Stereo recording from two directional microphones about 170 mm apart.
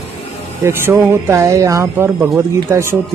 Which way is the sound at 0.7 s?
15° right (ahead or behind).